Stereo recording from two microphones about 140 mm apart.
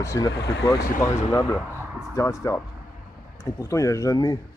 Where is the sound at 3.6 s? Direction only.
20° left (ahead or behind).